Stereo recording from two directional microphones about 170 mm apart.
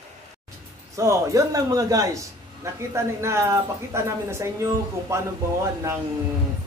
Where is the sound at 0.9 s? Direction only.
15° right (ahead or behind).